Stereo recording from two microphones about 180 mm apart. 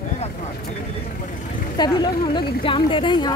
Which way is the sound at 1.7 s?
25° left (ahead or behind).